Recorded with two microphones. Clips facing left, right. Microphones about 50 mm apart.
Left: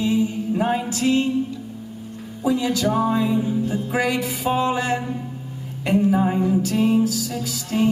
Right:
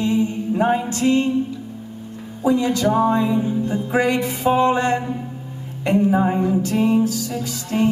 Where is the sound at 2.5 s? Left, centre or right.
Centre.